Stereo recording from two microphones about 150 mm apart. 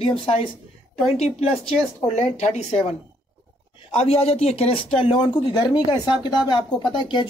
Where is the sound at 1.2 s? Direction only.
45° left (ahead or behind).